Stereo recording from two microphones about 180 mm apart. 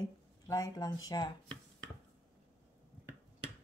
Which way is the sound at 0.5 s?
20° left (ahead or behind).